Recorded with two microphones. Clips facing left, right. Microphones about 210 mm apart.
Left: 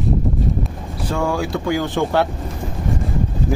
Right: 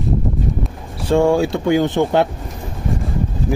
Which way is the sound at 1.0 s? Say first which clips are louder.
Right 7 dB; 25° right (ahead or behind).